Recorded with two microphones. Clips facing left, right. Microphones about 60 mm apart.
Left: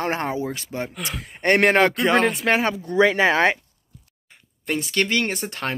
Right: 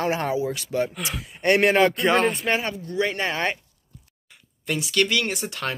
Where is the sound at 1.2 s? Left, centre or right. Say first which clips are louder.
Left 1 dB; left.